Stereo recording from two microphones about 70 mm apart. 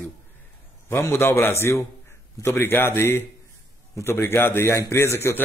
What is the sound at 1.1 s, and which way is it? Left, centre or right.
A man's voice, left.